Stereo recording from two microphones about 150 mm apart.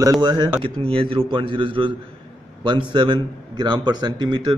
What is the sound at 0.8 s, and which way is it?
A man's voice, 40° right (ahead or behind).